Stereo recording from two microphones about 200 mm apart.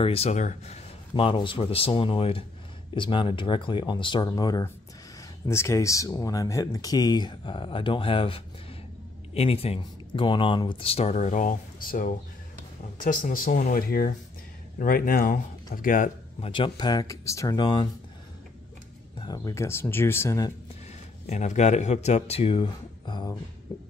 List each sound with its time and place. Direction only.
0.0 s speech: 30° left (ahead or behind)
19.2 s speech: 15° left (ahead or behind)
21.3 s speech: 35° left (ahead or behind)
23.7 s heart sounds: 20° left (ahead or behind)